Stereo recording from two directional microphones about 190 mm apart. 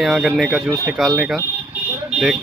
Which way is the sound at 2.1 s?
Centre (ahead or behind).